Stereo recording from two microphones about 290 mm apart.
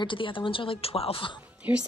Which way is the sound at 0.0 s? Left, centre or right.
Centre.